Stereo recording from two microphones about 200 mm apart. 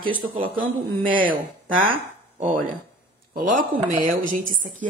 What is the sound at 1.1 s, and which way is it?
Speech, 25° right (ahead or behind).